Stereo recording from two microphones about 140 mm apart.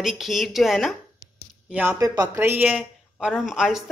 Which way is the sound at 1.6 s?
10° right (ahead or behind).